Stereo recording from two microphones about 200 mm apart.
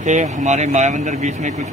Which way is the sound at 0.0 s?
40° right (ahead or behind).